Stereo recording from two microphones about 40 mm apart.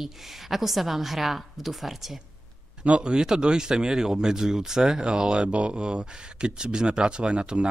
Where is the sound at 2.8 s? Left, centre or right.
Right.